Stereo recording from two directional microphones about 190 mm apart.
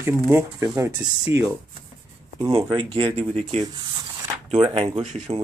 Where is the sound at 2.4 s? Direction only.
25° right (ahead or behind).